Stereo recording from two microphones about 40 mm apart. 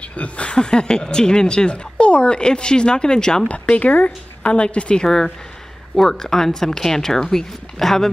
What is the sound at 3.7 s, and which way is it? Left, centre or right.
Speech, left.